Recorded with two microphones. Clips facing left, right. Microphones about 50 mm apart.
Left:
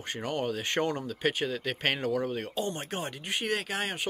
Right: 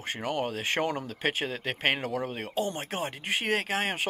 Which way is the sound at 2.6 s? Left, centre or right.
Centre.